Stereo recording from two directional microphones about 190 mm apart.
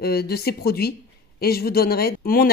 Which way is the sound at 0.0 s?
55° left (ahead or behind).